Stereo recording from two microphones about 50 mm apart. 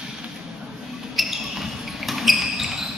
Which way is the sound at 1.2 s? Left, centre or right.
Centre.